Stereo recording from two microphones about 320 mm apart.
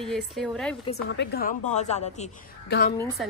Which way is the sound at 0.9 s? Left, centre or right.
Left.